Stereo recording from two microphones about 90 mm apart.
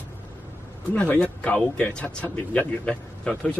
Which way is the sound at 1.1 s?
20° left (ahead or behind).